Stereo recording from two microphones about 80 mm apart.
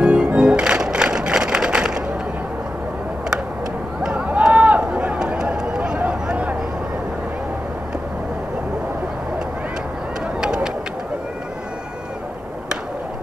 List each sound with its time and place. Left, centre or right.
0.0 s music: centre
4.0 s a sound: centre
10.4 s bird: centre